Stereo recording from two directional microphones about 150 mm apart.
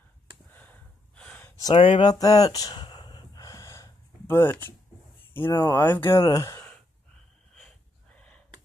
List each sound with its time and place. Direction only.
0.5 s gasp: 10° left (ahead or behind)
1.6 s a sound: 30° left (ahead or behind); by 4.7 s 15° left (ahead or behind)
5.3 s speech: 15° left (ahead or behind)
7.5 s snort: 5° left (ahead or behind)